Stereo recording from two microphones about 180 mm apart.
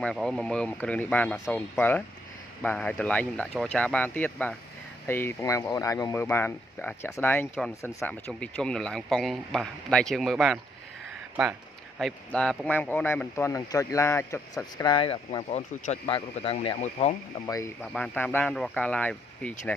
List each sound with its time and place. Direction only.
0.0 s a man's voice: centre (ahead or behind)
12.0 s speech: 5° left (ahead or behind); by 17.1 s 35° left (ahead or behind)
17.9 s speech: 5° left (ahead or behind)